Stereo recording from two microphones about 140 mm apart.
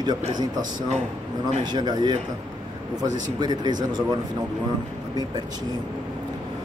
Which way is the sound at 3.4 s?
30° right (ahead or behind).